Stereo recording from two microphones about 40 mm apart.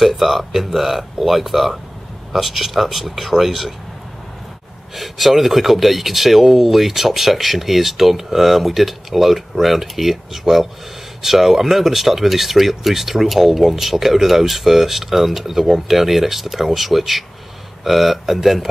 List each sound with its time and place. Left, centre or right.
0.0 s speech: centre
4.9 s speech: centre